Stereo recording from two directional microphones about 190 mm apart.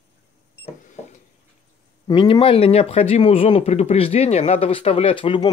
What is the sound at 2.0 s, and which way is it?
Speech, 25° left (ahead or behind).